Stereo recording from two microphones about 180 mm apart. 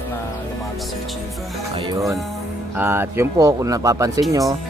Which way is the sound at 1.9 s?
15° right (ahead or behind).